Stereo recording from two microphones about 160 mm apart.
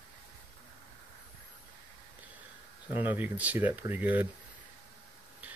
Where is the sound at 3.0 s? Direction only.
10° right (ahead or behind).